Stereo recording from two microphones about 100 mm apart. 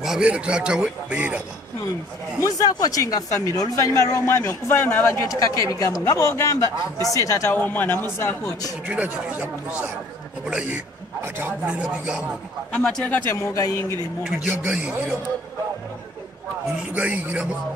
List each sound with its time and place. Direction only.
0.0 s a man's voice: 5° right (ahead or behind)
2.4 s speech: 40° left (ahead or behind)
7.5 s speech: 20° left (ahead or behind)
8.8 s a man's voice: 15° right (ahead or behind)
12.7 s speech: 10° left (ahead or behind); by 13.7 s 35° left (ahead or behind)
14.2 s a man's voice: 15° right (ahead or behind)
16.9 s a man's voice: 15° right (ahead or behind)